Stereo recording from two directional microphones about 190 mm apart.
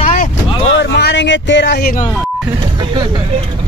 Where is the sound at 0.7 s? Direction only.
65° left (ahead or behind).